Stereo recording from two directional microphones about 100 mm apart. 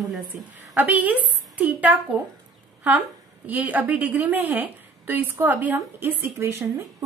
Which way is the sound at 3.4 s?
15° right (ahead or behind).